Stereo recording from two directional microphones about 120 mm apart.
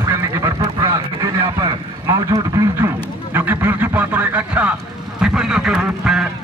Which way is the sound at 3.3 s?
15° right (ahead or behind).